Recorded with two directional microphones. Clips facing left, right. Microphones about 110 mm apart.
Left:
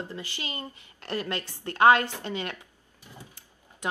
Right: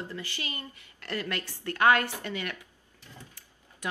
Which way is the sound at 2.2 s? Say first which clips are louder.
Left 2 dB; 20° left (ahead or behind).